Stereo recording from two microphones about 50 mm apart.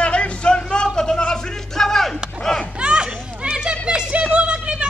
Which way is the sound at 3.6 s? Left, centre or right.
Centre.